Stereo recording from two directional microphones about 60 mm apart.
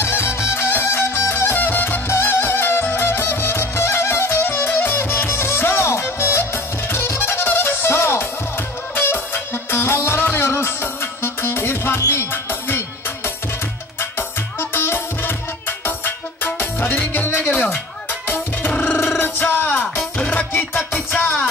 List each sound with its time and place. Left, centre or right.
0.0 s music: left
2.0 s music: left
20.0 s music: centre
20.5 s music: left